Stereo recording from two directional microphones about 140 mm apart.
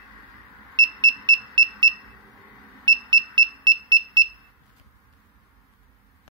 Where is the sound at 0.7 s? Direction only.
30° right (ahead or behind).